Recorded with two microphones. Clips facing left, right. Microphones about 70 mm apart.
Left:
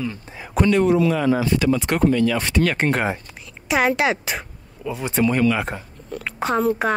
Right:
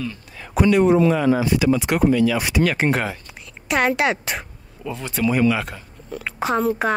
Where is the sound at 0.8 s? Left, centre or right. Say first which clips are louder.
Right 2 dB; right.